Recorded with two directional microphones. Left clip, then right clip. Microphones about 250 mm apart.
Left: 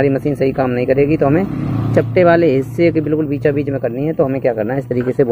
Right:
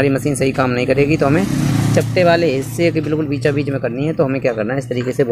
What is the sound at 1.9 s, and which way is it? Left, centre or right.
Speech, centre.